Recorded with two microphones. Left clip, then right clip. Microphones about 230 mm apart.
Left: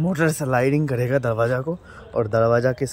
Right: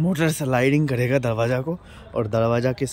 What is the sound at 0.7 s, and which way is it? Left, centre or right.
Speech, centre.